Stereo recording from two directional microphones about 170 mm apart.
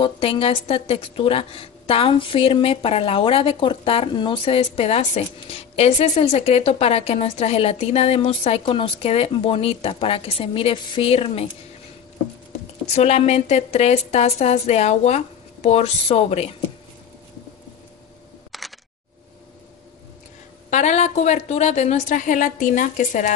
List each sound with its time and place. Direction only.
0.0 s a woman's voice: 35° left (ahead or behind)
12.9 s a woman's voice: 40° left (ahead or behind)
18.5 s single-lens reflex camera: centre (ahead or behind)
20.7 s a woman's voice: 45° left (ahead or behind)